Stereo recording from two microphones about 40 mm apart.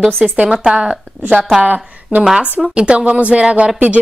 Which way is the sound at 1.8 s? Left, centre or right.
Right.